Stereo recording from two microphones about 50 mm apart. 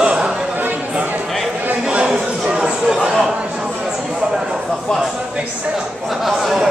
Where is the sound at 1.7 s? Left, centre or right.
Right.